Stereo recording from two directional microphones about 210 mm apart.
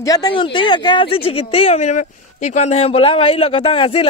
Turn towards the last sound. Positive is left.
turn(degrees=25)  # may be behind; listen again after turning